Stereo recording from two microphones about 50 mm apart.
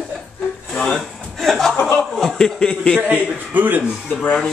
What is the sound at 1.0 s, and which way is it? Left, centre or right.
Chuckle, centre.